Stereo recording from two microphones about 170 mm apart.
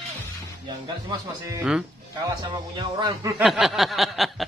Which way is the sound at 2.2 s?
25° right (ahead or behind).